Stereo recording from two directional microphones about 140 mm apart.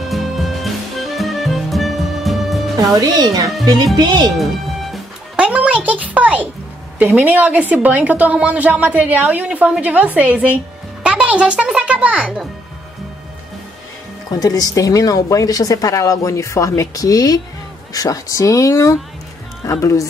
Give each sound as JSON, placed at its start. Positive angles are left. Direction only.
{"t": 0.1, "sound": "music", "side_deg": 0}
{"t": 2.8, "sound": "speech", "side_deg": -25}
{"t": 4.9, "sound": "music", "side_deg": -10}
{"t": 7.0, "sound": "a woman's voice", "side_deg": -10}
{"t": 14.3, "sound": "speech", "side_deg": 25}